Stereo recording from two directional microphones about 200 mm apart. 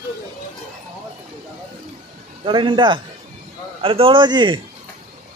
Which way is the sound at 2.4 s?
25° right (ahead or behind).